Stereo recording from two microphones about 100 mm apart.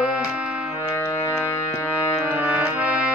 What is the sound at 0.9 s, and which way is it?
Music, 25° left (ahead or behind).